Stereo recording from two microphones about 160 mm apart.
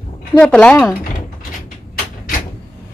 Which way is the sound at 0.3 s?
5° left (ahead or behind).